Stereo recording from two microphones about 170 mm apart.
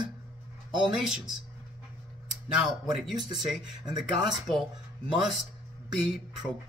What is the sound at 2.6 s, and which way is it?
Speech, centre (ahead or behind).